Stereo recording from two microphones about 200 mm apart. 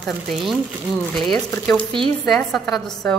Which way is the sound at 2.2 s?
Centre (ahead or behind).